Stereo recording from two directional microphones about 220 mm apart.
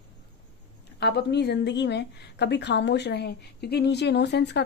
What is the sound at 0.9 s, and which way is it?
A woman's voice, 50° left (ahead or behind).